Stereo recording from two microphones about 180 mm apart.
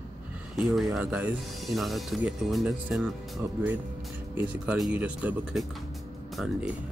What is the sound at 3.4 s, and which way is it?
Speech, 15° right (ahead or behind).